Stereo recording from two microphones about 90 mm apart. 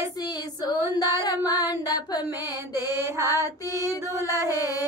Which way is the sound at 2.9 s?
30° right (ahead or behind).